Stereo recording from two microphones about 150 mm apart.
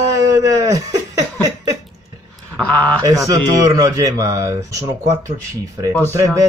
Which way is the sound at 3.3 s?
20° right (ahead or behind).